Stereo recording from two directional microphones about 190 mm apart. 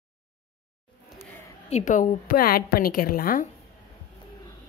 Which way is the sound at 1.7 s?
40° left (ahead or behind).